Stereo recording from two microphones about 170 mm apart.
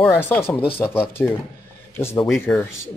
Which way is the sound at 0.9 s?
15° left (ahead or behind).